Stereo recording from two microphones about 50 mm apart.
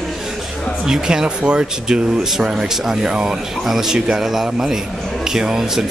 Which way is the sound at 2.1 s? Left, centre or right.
Centre.